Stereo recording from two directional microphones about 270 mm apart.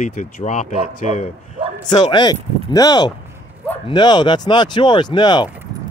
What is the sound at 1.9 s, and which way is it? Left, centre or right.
Speech, centre.